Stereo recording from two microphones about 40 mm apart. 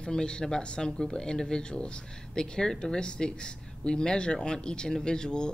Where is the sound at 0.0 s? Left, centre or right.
Left.